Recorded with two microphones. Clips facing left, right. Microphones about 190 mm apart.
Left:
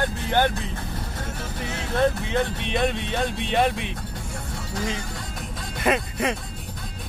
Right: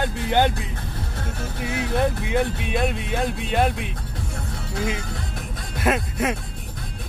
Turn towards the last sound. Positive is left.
turn(degrees=-5)  # may be behind; listen again after turning